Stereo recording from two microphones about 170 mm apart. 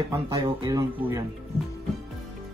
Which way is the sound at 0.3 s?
25° right (ahead or behind).